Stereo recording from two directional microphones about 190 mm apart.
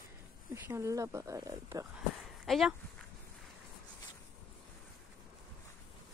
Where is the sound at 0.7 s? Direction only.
15° right (ahead or behind).